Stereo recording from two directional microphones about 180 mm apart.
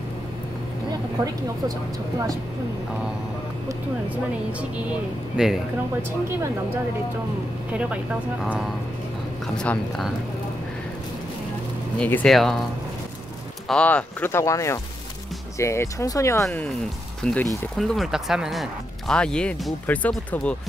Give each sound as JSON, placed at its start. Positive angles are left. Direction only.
{"t": 3.6, "sound": "speech", "side_deg": -10}
{"t": 7.7, "sound": "speech", "side_deg": -5}
{"t": 12.0, "sound": "speech", "side_deg": 10}
{"t": 13.7, "sound": "speech", "side_deg": 5}
{"t": 17.2, "sound": "speech", "side_deg": 5}